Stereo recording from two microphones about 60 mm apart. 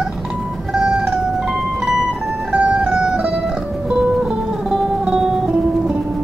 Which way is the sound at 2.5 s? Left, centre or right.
Centre.